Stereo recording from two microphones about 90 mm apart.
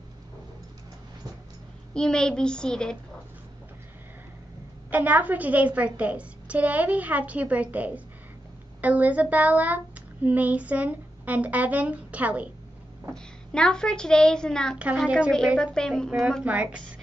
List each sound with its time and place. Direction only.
2.0 s a woman's voice: 10° left (ahead or behind)
4.9 s a woman's voice: 20° right (ahead or behind)
13.1 s a woman's voice: 10° left (ahead or behind)
15.0 s a woman's voice: 10° right (ahead or behind)
15.6 s a woman's voice: 10° left (ahead or behind)
16.4 s a woman's voice: 15° right (ahead or behind)